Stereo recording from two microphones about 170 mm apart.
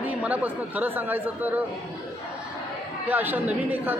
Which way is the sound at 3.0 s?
10° right (ahead or behind).